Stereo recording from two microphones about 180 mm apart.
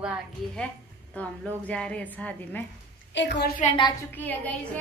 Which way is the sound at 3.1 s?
75° left (ahead or behind).